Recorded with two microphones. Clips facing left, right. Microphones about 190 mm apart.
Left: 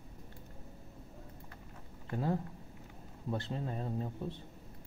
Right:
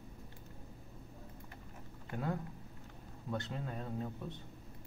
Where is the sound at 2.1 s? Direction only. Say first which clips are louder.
Left 4 dB; 30° left (ahead or behind).